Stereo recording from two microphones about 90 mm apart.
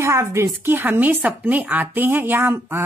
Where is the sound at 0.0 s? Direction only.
30° right (ahead or behind).